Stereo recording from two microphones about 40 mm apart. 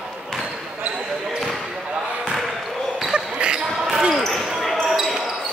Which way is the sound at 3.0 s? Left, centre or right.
Right.